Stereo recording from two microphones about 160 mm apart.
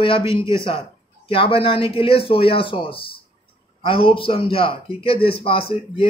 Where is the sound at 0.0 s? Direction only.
35° left (ahead or behind).